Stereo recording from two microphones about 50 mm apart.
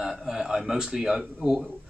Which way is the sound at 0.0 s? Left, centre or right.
Centre.